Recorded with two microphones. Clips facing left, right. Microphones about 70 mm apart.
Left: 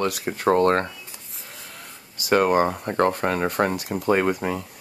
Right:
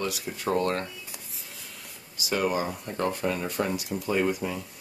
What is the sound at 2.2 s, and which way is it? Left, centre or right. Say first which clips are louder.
Speech: left 8 dB; left.